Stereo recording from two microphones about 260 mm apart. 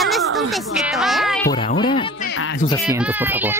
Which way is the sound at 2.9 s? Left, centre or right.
Centre.